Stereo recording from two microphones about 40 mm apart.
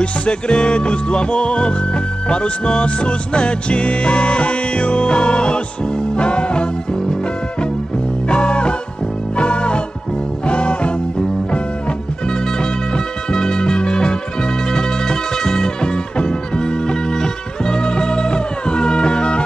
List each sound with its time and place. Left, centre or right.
0.0 s music: left
8.3 s music: left
12.9 s music: centre